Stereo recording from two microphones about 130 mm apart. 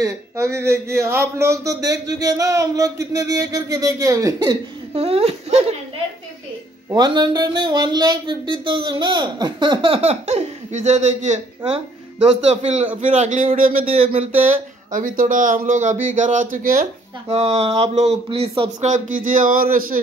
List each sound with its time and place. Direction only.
0.0 s speech: 20° right (ahead or behind)
4.9 s a sound: 50° right (ahead or behind)
7.1 s speech: 35° right (ahead or behind); by 12.8 s 55° right (ahead or behind)
13.0 s speech: 65° right (ahead or behind); by 13.8 s 90° right
14.1 s speech: 65° right (ahead or behind); by 16.8 s 90° right
17.3 s a sound: 50° right (ahead or behind)
18.8 s speech: 70° right (ahead or behind); by 20.0 s 90° right